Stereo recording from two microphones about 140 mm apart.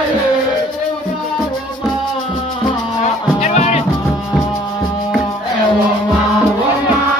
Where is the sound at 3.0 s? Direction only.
55° left (ahead or behind).